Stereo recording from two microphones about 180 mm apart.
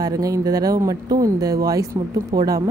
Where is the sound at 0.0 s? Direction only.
20° right (ahead or behind).